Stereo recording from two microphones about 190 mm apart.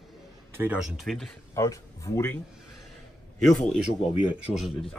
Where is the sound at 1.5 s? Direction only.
15° left (ahead or behind).